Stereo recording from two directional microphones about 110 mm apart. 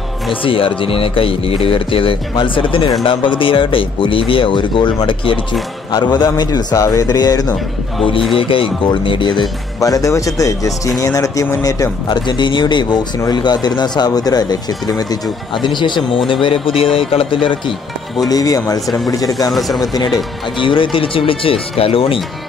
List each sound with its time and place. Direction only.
0.3 s speech: 55° left (ahead or behind); by 7.5 s 35° left (ahead or behind)
8.4 s speech: 55° left (ahead or behind)
9.8 s speech: 30° left (ahead or behind)
16.4 s speech: 55° left (ahead or behind)
18.3 s speech: 35° left (ahead or behind)
19.5 s speech: centre (ahead or behind)
20.5 s speech: 50° left (ahead or behind)